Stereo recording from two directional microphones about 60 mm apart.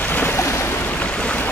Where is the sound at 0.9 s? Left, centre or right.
Left.